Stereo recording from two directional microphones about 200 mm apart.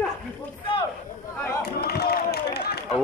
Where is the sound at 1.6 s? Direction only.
50° left (ahead or behind).